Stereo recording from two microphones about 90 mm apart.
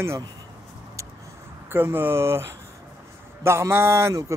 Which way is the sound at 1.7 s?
25° right (ahead or behind).